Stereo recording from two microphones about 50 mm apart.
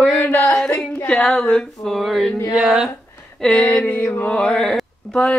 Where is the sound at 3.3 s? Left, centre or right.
Centre.